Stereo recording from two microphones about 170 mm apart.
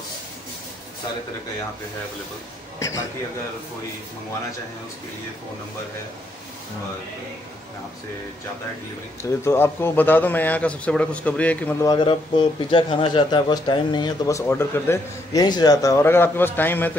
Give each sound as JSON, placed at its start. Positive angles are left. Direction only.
{"t": 9.2, "sound": "speech", "side_deg": 15}
{"t": 11.8, "sound": "speech", "side_deg": 25}